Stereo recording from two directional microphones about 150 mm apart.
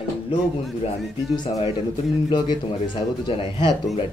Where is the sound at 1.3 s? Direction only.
30° left (ahead or behind).